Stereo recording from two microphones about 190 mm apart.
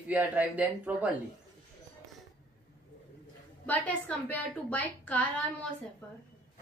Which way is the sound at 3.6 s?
10° left (ahead or behind).